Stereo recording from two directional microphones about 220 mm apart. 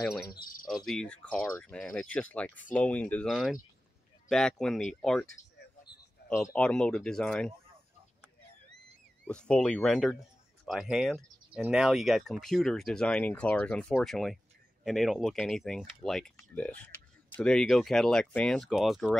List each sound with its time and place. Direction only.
0.0 s speech: 5° left (ahead or behind)
0.3 s speech: 40° left (ahead or behind)
0.7 s speech: centre (ahead or behind)
5.4 s a sound: 35° left (ahead or behind)
6.2 s speech: 5° left (ahead or behind)
9.3 s speech: 5° left (ahead or behind)